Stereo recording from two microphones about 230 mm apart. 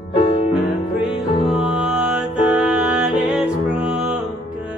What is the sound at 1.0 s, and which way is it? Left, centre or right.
Music, centre.